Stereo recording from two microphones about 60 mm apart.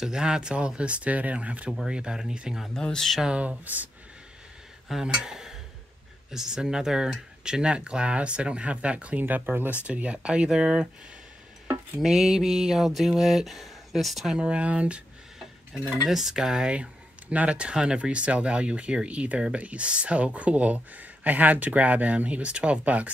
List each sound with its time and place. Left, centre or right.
0.0 s speech: centre
2.8 s speech: centre
3.3 s speech: right
5.0 s a sound: centre
6.3 s speech: centre
9.2 s speech: right
9.8 s speech: right
12.0 s a sound: centre
14.3 s speech: centre
15.3 s dishes: centre
16.1 s speech: centre
16.7 s speech: right